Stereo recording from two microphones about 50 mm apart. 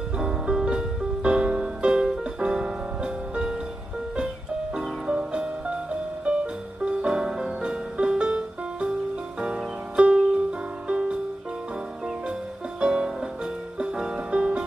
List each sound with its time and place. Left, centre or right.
0.2 s music: centre
0.7 s music: centre
4.7 s music: centre
9.4 s music: right
12.8 s music: centre